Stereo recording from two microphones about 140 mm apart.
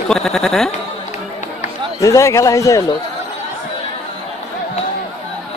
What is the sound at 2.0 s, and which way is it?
Speech, 20° left (ahead or behind).